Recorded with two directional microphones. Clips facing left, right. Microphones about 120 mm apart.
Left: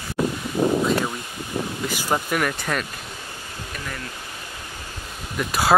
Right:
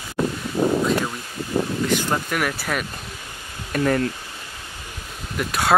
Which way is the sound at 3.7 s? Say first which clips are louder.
Right 15 dB; 55° right (ahead or behind).